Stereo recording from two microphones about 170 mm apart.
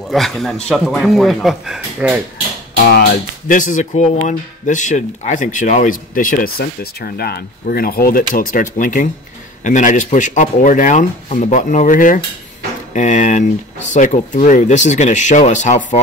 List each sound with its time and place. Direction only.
0.1 s a man's voice: centre (ahead or behind)
2.8 s speech: 70° left (ahead or behind)
3.4 s speech: 50° left (ahead or behind)